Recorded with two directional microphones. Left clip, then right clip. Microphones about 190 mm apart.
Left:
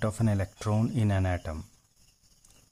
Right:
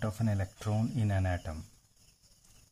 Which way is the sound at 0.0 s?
25° left (ahead or behind).